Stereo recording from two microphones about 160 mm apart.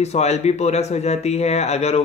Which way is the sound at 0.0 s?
45° left (ahead or behind).